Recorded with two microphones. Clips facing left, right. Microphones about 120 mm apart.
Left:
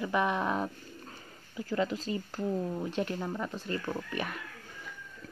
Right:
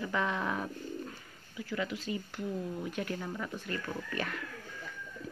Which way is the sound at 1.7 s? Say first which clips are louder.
Left 4 dB; 35° left (ahead or behind).